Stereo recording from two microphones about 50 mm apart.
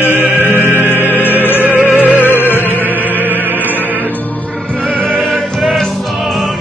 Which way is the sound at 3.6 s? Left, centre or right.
Left.